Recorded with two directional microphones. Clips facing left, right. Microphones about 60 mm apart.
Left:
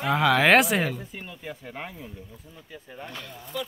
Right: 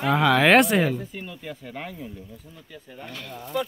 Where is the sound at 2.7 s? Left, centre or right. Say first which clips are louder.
Even; left.